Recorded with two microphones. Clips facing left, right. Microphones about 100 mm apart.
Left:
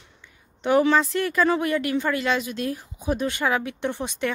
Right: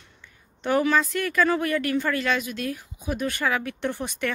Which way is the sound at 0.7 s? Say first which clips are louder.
Left 3 dB; 25° left (ahead or behind).